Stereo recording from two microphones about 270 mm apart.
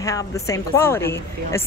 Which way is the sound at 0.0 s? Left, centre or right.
Centre.